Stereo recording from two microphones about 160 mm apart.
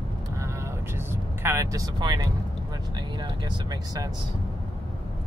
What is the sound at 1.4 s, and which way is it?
Speech, 20° right (ahead or behind).